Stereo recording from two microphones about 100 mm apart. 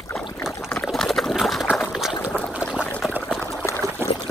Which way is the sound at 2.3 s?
10° left (ahead or behind).